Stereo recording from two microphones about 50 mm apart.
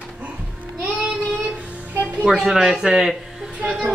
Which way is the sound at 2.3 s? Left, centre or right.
Centre.